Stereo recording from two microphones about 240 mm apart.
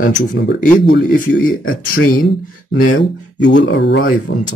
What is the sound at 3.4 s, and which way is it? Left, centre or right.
Speech, left.